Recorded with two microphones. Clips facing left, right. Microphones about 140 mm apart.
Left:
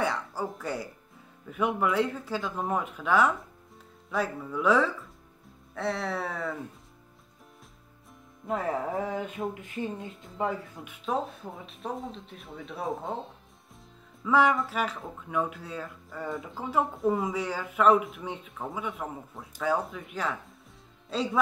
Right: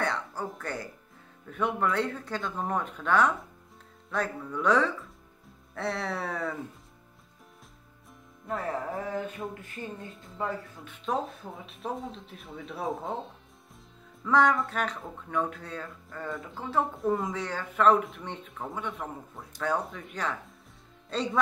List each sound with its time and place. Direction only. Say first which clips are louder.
0.0 s music: left 2 dB; 10° left (ahead or behind)
1.5 s speech: left 1 dB; 10° left (ahead or behind)
8.5 s music: left 3 dB; 20° left (ahead or behind)
10.4 s speech: left 3 dB; 15° left (ahead or behind)
11.1 s speech: even; centre (ahead or behind)
14.2 s speech: even; 5° left (ahead or behind)
21.1 s music: left 1 dB; 5° left (ahead or behind)